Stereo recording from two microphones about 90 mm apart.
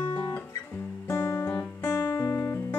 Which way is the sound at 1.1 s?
20° left (ahead or behind).